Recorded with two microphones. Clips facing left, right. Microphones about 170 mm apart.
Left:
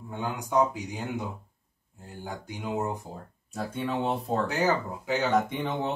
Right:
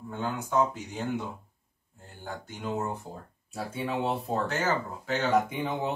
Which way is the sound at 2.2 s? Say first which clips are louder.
Even; 10° left (ahead or behind).